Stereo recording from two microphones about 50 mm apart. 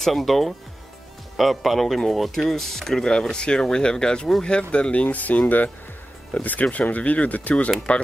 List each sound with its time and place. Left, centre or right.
0.0 s speech: centre; by 7.7 s left